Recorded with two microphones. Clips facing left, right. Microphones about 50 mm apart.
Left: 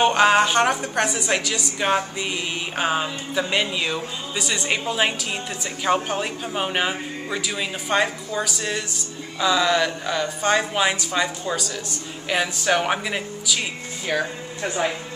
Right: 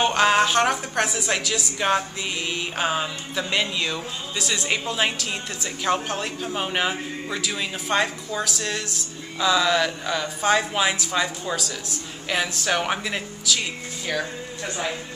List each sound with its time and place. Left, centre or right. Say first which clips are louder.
0.0 s speech: left 2 dB; centre